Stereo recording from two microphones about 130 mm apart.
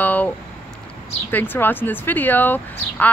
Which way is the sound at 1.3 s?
15° left (ahead or behind).